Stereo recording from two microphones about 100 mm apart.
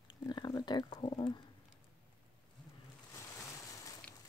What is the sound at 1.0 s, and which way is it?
Speech, 50° left (ahead or behind).